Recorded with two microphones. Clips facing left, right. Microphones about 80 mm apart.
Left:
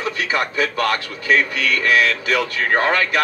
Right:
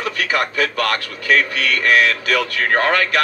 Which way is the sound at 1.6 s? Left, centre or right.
Right.